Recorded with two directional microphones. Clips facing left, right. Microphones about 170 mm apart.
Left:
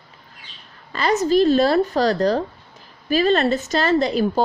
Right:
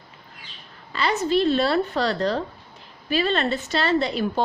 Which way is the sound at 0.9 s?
45° left (ahead or behind).